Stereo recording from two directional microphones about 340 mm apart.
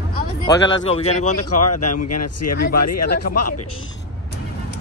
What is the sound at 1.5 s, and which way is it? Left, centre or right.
Speech, left.